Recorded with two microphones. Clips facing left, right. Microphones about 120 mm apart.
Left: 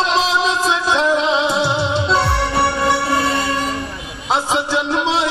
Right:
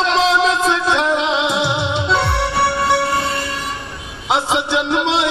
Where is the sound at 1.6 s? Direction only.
65° right (ahead or behind).